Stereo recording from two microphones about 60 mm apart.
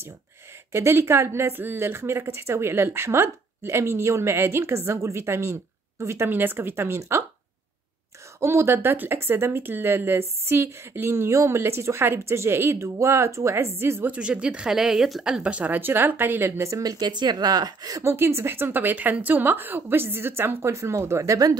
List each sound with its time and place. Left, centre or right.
0.7 s a woman's voice: right
6.3 s speech: right
8.4 s a woman's voice: right
14.0 s speech: right; by 15.2 s centre
15.4 s speech: right
17.5 s speech: right
18.0 s speech: right